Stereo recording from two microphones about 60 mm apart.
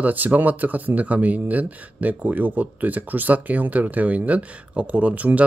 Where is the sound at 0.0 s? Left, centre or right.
Right.